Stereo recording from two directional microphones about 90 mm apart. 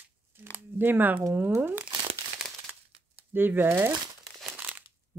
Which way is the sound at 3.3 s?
25° right (ahead or behind).